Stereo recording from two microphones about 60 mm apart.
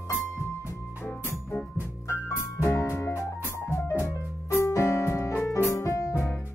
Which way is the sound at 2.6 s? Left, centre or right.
Left.